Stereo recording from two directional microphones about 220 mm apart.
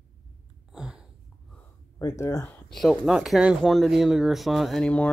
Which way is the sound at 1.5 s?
10° left (ahead or behind).